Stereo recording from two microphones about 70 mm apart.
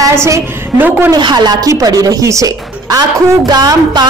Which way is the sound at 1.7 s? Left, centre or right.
Right.